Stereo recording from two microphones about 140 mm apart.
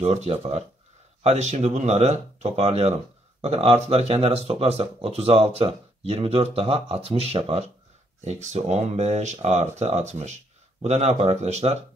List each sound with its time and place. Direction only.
0.0 s speech: 50° right (ahead or behind)
8.2 s speech: 55° right (ahead or behind)